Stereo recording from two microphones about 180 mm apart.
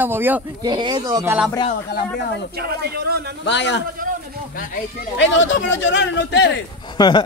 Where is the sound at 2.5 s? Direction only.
60° right (ahead or behind).